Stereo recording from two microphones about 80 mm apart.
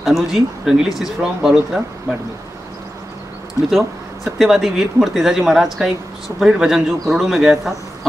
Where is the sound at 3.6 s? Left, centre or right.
Left.